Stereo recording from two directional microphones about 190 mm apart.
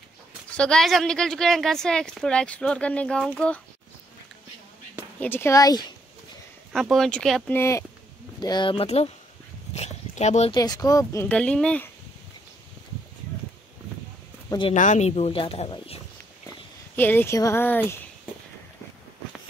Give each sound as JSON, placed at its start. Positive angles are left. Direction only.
{"t": 0.5, "sound": "speech", "side_deg": 5}
{"t": 5.2, "sound": "speech", "side_deg": 10}
{"t": 6.7, "sound": "speech", "side_deg": 0}
{"t": 7.5, "sound": "speech", "side_deg": 15}
{"t": 9.8, "sound": "dog", "side_deg": 35}
{"t": 10.5, "sound": "speech", "side_deg": 20}
{"t": 14.7, "sound": "speech", "side_deg": 40}
{"t": 16.9, "sound": "speech", "side_deg": 10}